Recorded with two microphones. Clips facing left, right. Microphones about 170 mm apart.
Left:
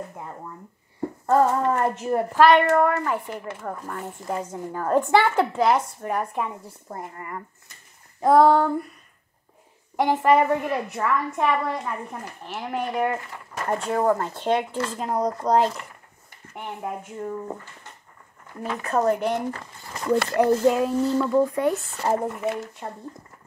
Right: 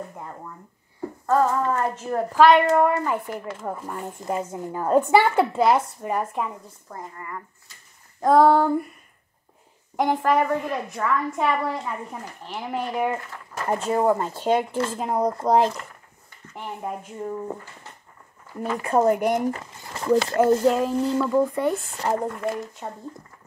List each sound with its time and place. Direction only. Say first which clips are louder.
0.1 s a woman's voice: even; 5° left (ahead or behind)
1.2 s speech: left 1 dB; 20° left (ahead or behind)
2.3 s a woman's voice: right 1 dB; centre (ahead or behind)
6.9 s speech: left 1 dB; 25° left (ahead or behind)
8.2 s a woman's voice: even; centre (ahead or behind)
9.9 s a woman's voice: left 2 dB; centre (ahead or behind)
18.5 s a woman's voice: right 3 dB; centre (ahead or behind)